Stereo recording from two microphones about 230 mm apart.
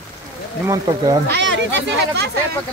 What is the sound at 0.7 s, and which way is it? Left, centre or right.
Speech, centre.